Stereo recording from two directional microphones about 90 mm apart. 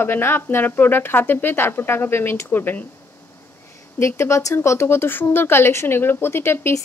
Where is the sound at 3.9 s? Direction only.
30° left (ahead or behind).